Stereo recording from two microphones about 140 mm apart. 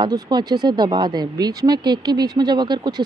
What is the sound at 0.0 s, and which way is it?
Speech, 30° right (ahead or behind).